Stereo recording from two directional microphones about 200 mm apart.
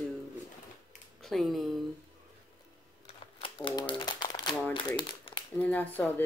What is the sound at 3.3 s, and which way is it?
Crumpling, 25° left (ahead or behind).